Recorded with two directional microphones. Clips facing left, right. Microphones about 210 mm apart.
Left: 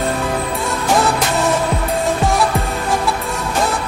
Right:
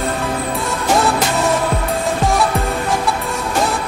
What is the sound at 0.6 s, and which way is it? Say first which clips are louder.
Music: even; centre (ahead or behind).